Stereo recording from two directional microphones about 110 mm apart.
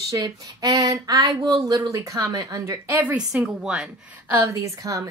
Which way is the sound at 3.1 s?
5° right (ahead or behind).